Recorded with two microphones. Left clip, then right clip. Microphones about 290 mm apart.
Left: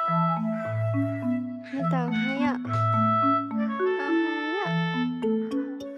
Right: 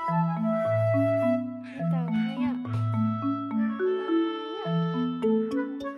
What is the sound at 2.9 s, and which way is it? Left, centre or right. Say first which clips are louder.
Music: left 8 dB; centre.